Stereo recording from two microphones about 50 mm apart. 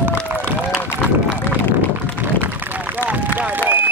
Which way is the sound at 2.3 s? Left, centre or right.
Right.